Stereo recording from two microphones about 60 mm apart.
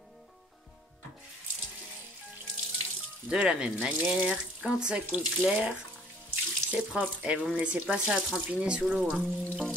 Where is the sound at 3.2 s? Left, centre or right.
Centre.